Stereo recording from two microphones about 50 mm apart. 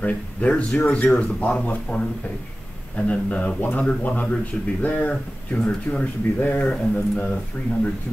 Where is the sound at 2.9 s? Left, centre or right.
Left.